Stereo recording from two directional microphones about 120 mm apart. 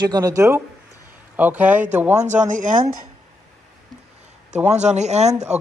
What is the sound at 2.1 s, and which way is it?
Speech, 80° right.